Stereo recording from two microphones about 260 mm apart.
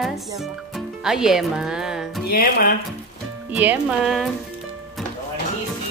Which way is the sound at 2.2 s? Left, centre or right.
Left.